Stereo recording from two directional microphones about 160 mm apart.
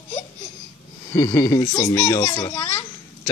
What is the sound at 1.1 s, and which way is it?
A child's voice, 20° left (ahead or behind).